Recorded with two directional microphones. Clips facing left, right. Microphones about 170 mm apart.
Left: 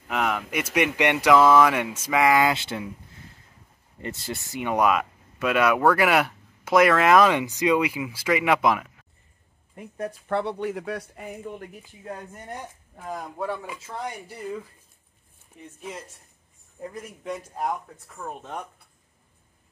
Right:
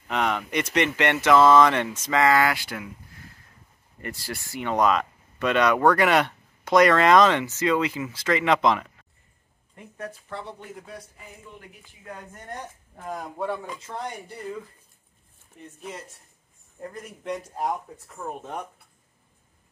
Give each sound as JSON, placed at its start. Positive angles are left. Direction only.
{"t": 0.1, "sound": "speech", "side_deg": 5}
{"t": 4.0, "sound": "speech", "side_deg": 20}
{"t": 10.2, "sound": "speech", "side_deg": 65}
{"t": 12.4, "sound": "speech", "side_deg": 5}
{"t": 16.8, "sound": "speech", "side_deg": 5}